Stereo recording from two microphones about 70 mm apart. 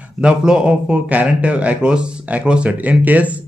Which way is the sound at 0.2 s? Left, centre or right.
Centre.